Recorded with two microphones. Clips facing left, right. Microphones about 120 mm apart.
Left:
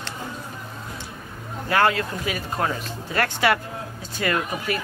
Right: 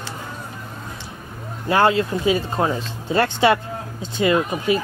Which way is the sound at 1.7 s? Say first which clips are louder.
Right 4 dB; 25° right (ahead or behind).